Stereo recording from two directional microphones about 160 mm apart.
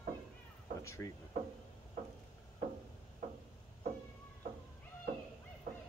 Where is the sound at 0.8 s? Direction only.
20° left (ahead or behind).